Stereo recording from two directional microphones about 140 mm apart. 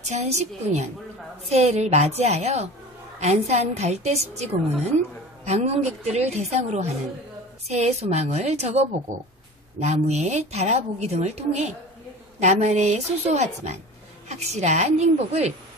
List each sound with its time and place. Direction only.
0.0 s a woman's voice: 55° right (ahead or behind)